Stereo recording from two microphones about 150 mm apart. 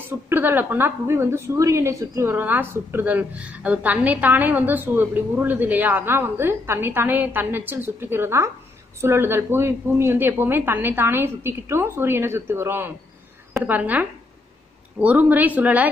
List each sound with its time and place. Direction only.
0.1 s a woman's voice: 15° right (ahead or behind)